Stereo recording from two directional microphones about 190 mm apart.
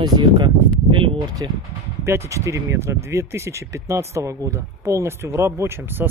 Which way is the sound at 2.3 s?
15° right (ahead or behind).